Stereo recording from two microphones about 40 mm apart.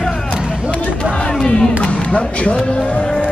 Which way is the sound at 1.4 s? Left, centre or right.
Centre.